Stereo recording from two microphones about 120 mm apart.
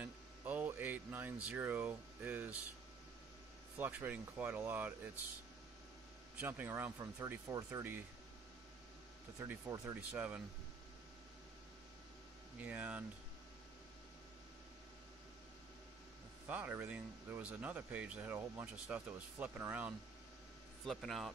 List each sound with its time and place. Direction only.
0.0 s a sound: 15° right (ahead or behind)
3.7 s speech: 15° right (ahead or behind)
6.3 s speech: 15° right (ahead or behind)
9.4 s speech: 25° right (ahead or behind)
12.5 s speech: 15° right (ahead or behind)
16.4 s speech: 15° right (ahead or behind)
20.8 s speech: centre (ahead or behind)